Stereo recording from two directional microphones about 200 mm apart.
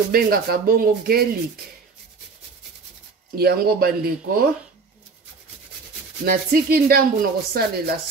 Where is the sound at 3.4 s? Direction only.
50° right (ahead or behind).